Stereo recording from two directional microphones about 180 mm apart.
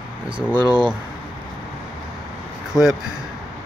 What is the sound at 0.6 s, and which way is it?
Speech, 25° right (ahead or behind).